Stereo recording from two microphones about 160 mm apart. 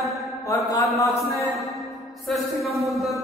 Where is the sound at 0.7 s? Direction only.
20° left (ahead or behind).